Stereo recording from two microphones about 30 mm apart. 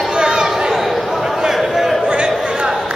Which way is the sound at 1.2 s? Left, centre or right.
Centre.